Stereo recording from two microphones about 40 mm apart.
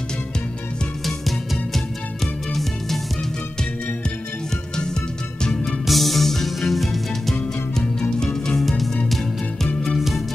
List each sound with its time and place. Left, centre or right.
5.4 s music: left
5.7 s music: centre
7.8 s music: left
8.5 s music: centre
9.8 s music: centre